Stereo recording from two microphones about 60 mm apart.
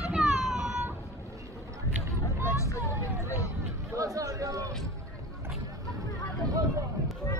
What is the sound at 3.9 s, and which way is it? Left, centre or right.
Chatter, right.